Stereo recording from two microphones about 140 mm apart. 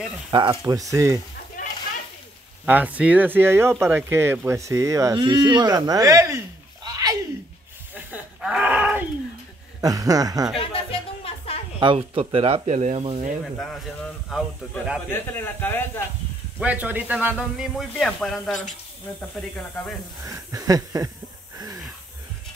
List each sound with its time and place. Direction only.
0.3 s speech: 30° right (ahead or behind)
1.6 s a sound: 65° left (ahead or behind)
2.6 s speech: 10° right (ahead or behind); by 7.2 s 25° right (ahead or behind)
7.9 s a sound: 10° right (ahead or behind)
9.8 s speech: 25° right (ahead or behind)
10.7 s music: 45° left (ahead or behind)
11.8 s speech: 40° right (ahead or behind); by 13.0 s 55° right (ahead or behind)
13.1 s speech: 70° right (ahead or behind)
13.6 s speech: 5° left (ahead or behind)
15.0 s speech: 15° left (ahead or behind)
16.6 s speech: 10° right (ahead or behind); by 19.9 s 10° left (ahead or behind)
20.2 s a sound: 25° right (ahead or behind)
21.5 s wheeze: 25° right (ahead or behind)